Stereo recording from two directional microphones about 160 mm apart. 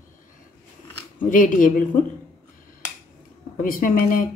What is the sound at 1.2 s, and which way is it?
Speech, 55° left (ahead or behind).